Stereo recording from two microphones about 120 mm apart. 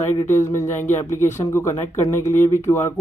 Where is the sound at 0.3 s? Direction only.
20° left (ahead or behind).